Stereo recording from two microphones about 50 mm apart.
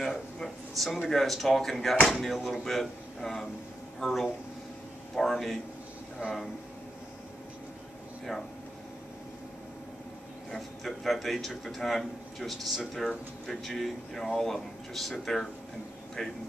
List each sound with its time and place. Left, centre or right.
0.0 s a sound: centre
1.0 s a man's voice: centre
6.2 s speech: right
8.3 s a man's voice: centre
10.5 s a man's voice: centre